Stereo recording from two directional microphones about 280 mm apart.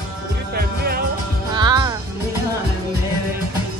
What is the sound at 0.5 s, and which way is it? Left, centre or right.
Music, right.